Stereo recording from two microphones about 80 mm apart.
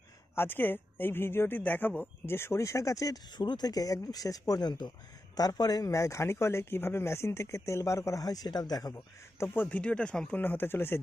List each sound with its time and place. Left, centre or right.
0.4 s speech: left
3.3 s speech: left
9.7 s speech: centre